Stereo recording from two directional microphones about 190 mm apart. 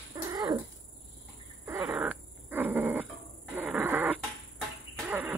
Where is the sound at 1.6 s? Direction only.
5° right (ahead or behind).